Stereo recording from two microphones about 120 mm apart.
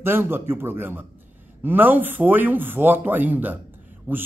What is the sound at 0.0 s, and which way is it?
A man's voice, 20° right (ahead or behind).